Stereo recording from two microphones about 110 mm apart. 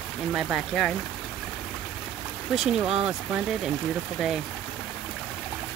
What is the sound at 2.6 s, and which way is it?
Speech, 5° right (ahead or behind).